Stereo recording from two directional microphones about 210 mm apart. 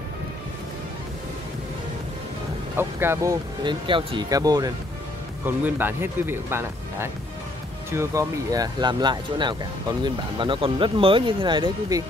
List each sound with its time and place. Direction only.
2.8 s speech: 10° right (ahead or behind)